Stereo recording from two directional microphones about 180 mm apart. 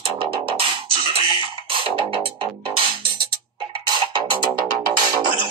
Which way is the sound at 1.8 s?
30° right (ahead or behind).